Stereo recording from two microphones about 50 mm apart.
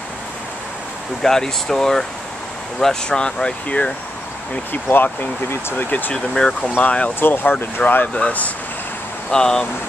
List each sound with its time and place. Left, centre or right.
1.2 s speech: centre
4.8 s speech: left
5.9 s speech: left
6.1 s speech: centre
6.8 s speech: left
7.2 s speech: left
7.9 s speech: left
9.3 s speech: centre